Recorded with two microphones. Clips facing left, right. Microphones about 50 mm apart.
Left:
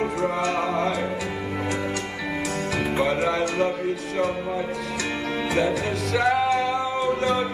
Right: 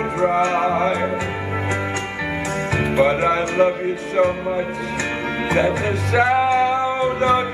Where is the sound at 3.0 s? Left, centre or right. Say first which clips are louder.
Right 6 dB; right.